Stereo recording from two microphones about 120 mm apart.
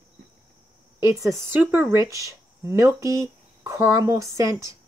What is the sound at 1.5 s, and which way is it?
A woman's voice, 15° right (ahead or behind).